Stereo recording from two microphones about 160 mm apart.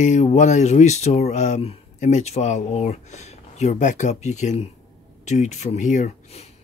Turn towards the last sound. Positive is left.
turn(degrees=45)  # may be behind; listen again after turning